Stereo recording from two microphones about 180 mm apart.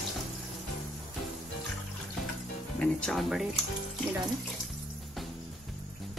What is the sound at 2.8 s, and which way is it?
Speech, 5° left (ahead or behind).